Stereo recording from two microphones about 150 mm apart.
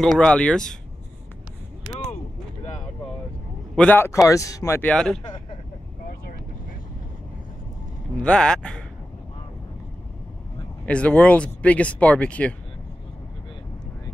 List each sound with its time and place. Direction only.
0.0 s speech: 5° left (ahead or behind)
3.7 s speech: 10° left (ahead or behind)
4.9 s speech: 5° left (ahead or behind)
8.2 s speech: 5° left (ahead or behind)
10.9 s speech: 10° left (ahead or behind)